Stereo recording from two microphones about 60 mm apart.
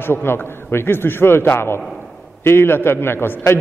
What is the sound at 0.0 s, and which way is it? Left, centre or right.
A man's voice, left.